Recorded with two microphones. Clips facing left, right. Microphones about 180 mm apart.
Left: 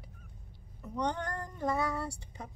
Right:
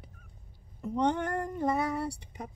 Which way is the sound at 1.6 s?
20° right (ahead or behind).